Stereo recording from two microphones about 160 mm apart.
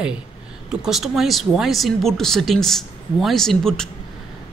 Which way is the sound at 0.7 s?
Centre (ahead or behind).